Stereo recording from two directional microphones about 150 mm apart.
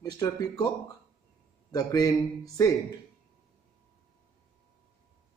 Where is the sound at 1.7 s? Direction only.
25° left (ahead or behind).